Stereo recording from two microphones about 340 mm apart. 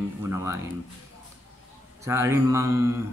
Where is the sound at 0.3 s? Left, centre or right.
Centre.